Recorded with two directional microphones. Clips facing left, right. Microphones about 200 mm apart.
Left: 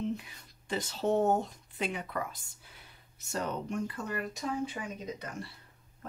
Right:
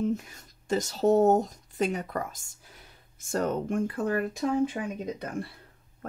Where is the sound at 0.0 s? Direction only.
45° right (ahead or behind).